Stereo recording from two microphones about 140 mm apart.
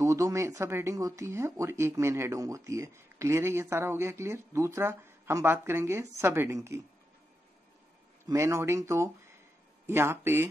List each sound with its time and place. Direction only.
0.0 s speech: 20° right (ahead or behind)
8.3 s speech: 20° right (ahead or behind)